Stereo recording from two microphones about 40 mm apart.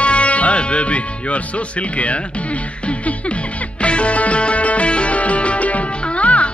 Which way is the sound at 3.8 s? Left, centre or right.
Left.